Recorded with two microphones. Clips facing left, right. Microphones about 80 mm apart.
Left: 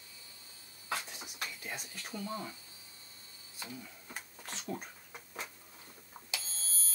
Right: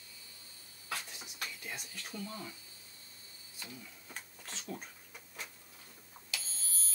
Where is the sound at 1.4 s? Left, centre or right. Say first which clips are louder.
Left 2 dB; left.